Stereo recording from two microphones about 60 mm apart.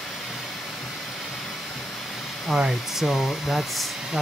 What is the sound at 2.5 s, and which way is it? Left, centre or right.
Speech, centre.